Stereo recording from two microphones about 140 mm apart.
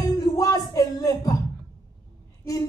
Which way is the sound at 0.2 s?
25° left (ahead or behind).